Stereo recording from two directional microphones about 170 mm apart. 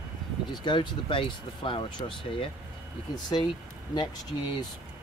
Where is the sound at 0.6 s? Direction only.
25° left (ahead or behind).